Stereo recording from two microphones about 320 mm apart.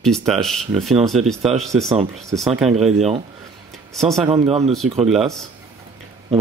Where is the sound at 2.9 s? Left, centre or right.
Centre.